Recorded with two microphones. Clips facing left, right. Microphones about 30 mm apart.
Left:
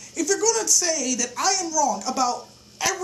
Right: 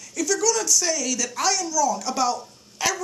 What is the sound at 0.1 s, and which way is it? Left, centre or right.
Speech, centre.